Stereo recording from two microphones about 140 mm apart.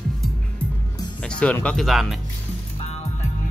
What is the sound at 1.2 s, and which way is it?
Speech, 10° left (ahead or behind).